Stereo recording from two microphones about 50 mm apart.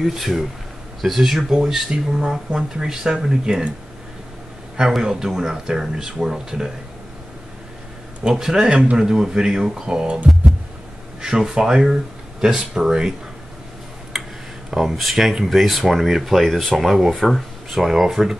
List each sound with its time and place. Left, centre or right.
0.0 s speech: centre
1.6 s speech: centre
4.9 s speech: centre
8.2 s speech: centre
11.1 s speech: centre
14.1 s tick-tock: centre
14.7 s speech: centre
17.6 s speech: centre